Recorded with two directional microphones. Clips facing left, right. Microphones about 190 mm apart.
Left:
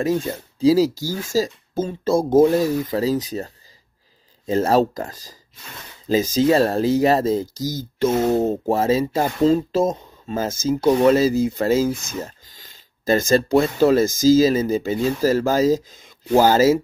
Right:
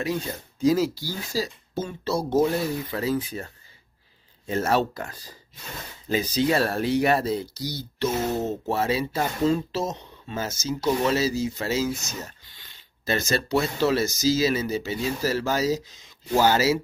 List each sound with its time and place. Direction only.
0.0 s speech: 45° left (ahead or behind)
0.6 s speech: 35° left (ahead or behind)
9.0 s speech: 30° left (ahead or behind)
9.7 s speech: 50° left (ahead or behind)
10.2 s speech: 35° left (ahead or behind)
10.7 s speech: 55° left (ahead or behind)
12.4 s a sound: 45° left (ahead or behind)
13.5 s speech: 50° left (ahead or behind)